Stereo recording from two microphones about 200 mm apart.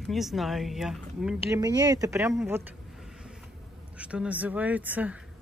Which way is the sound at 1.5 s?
20° right (ahead or behind).